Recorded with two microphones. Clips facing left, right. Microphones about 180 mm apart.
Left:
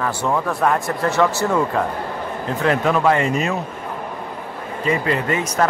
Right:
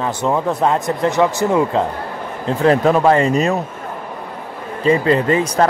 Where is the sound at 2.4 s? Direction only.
35° right (ahead or behind).